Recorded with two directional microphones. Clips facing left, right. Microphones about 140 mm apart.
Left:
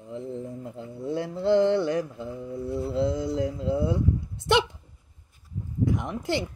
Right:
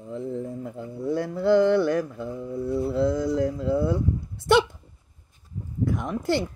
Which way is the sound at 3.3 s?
55° right (ahead or behind).